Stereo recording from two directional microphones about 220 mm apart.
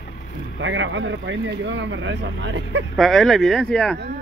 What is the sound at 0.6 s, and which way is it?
Speech, 60° right (ahead or behind).